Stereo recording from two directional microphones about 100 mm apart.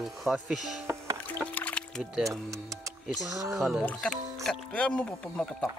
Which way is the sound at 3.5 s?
Centre (ahead or behind).